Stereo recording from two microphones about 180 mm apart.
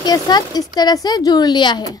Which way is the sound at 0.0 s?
20° left (ahead or behind).